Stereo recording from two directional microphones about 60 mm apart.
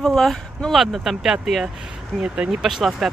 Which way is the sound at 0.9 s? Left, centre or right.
Centre.